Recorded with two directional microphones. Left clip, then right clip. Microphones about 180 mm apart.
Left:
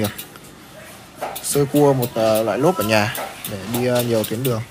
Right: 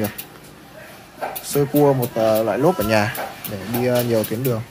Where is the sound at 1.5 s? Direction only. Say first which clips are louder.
Left 1 dB; 5° left (ahead or behind).